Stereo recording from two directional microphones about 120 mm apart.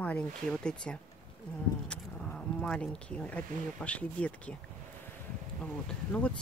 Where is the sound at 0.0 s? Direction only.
10° left (ahead or behind).